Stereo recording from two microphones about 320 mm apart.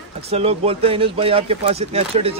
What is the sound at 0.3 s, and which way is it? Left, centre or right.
Speech, centre.